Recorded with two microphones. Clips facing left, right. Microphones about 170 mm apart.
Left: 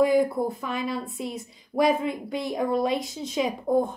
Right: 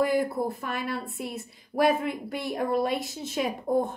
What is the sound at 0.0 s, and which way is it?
A woman's voice, 5° right (ahead or behind).